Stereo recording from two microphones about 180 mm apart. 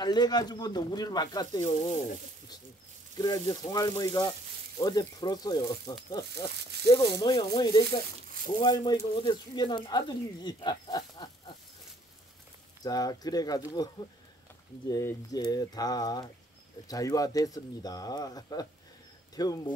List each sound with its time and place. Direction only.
0.0 s speech: 25° left (ahead or behind)
3.2 s speech: 20° left (ahead or behind)
12.8 s speech: 20° left (ahead or behind)